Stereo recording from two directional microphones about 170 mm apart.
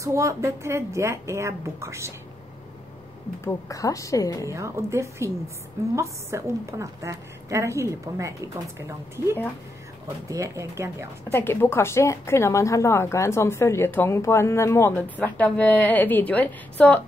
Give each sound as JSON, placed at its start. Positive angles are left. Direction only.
{"t": 0.0, "sound": "a woman's voice", "side_deg": -15}
{"t": 3.6, "sound": "a woman's voice", "side_deg": 20}
{"t": 4.5, "sound": "a woman's voice", "side_deg": -15}
{"t": 11.3, "sound": "speech", "side_deg": 15}